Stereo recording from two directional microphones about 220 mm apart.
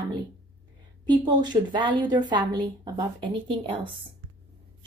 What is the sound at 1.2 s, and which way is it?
A woman's voice, 20° right (ahead or behind).